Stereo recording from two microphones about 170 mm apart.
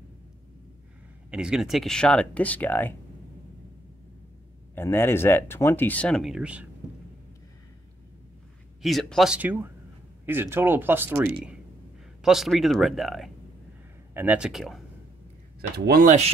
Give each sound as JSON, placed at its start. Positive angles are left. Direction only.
{"t": 1.3, "sound": "speech", "side_deg": -5}
{"t": 4.7, "sound": "speech", "side_deg": 15}
{"t": 8.8, "sound": "speech", "side_deg": 0}
{"t": 15.8, "sound": "speech", "side_deg": -65}